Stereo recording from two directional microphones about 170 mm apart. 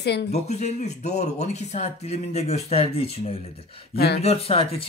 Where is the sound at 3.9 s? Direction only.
70° left (ahead or behind).